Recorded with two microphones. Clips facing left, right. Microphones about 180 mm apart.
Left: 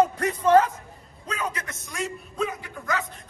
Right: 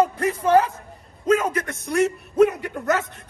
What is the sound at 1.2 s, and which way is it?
A man's voice, 45° right (ahead or behind).